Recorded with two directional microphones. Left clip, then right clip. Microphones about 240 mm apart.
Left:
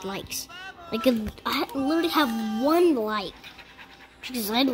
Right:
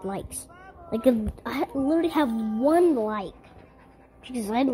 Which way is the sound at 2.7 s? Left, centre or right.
Centre.